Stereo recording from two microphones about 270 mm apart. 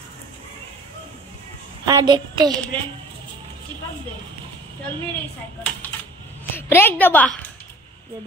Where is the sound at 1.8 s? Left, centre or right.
Centre.